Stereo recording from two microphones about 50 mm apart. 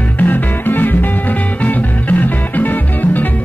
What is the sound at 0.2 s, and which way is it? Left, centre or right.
Music, left.